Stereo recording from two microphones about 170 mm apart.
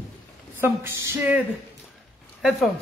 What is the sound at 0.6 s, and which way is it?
Speech, 15° right (ahead or behind).